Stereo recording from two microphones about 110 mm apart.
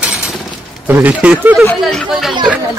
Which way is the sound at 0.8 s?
15° right (ahead or behind).